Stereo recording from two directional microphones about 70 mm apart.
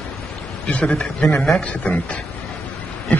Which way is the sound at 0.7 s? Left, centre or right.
Centre.